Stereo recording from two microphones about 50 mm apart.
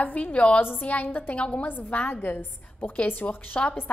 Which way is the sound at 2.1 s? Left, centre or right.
Left.